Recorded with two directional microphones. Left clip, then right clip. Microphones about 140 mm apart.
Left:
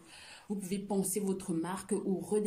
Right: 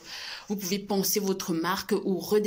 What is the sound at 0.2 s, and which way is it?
A woman's voice, 20° left (ahead or behind).